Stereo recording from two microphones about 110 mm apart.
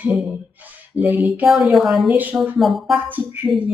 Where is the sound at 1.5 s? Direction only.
5° right (ahead or behind).